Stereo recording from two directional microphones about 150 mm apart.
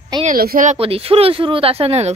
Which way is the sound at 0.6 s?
40° right (ahead or behind).